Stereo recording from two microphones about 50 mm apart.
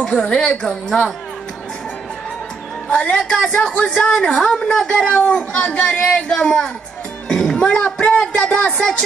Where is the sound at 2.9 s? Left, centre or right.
Centre.